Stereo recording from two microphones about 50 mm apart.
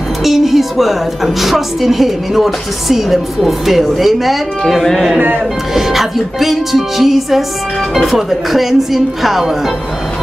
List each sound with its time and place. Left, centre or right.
0.2 s a woman's voice: centre